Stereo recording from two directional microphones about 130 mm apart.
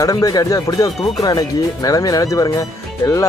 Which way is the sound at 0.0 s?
30° left (ahead or behind).